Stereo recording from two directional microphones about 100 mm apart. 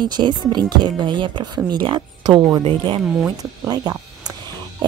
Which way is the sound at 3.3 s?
40° right (ahead or behind).